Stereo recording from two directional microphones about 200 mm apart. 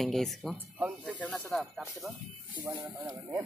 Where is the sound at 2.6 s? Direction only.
20° right (ahead or behind).